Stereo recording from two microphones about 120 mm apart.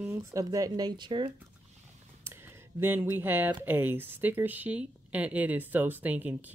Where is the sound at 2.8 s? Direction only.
20° right (ahead or behind).